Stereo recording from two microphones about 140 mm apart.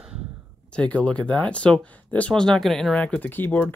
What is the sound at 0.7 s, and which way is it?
Speech, 10° left (ahead or behind).